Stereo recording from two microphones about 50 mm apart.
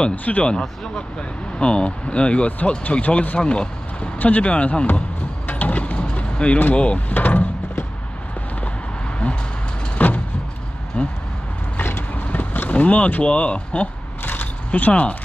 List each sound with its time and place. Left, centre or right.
0.1 s speech: left
0.5 s speech: centre
5.5 s mechanisms: left
6.6 s speech: left
7.2 s a sound: left
9.9 s a sound: left
11.7 s vehicle: left
14.2 s a sound: left
14.8 s speech: left